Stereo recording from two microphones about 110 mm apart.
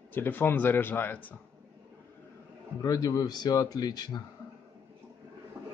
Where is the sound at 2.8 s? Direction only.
35° left (ahead or behind).